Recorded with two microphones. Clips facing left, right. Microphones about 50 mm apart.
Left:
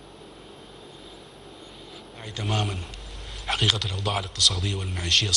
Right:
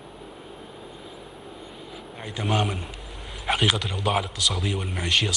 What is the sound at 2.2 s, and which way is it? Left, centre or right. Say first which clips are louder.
Speech: right 4 dB; centre.